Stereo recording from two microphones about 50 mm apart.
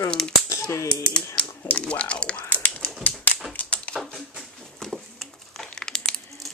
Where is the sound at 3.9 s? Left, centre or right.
Centre.